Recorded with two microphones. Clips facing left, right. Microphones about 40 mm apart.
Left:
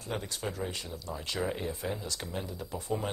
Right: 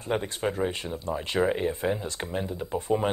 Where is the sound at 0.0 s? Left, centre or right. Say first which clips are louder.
Right 8 dB; right.